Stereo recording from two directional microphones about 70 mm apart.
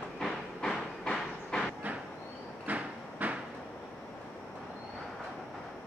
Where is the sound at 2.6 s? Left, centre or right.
Right.